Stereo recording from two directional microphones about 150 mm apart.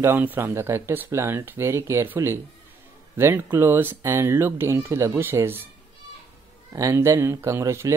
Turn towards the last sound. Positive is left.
turn(degrees=-15)  # may be behind; listen again after turning